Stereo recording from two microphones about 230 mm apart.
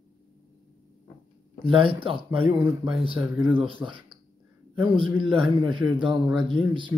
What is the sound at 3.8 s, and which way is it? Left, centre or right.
Speech, centre.